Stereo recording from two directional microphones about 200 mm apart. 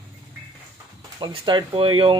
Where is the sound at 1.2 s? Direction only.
20° right (ahead or behind).